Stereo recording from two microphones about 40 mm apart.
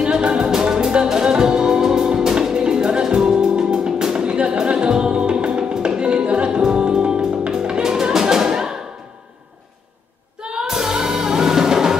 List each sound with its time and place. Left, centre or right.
0.0 s music: right
10.4 s music: centre